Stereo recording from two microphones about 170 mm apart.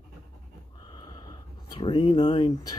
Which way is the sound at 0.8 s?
25° left (ahead or behind).